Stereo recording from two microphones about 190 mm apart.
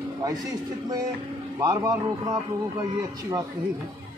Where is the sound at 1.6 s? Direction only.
15° right (ahead or behind).